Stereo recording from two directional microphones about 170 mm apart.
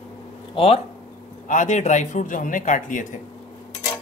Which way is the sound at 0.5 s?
35° left (ahead or behind).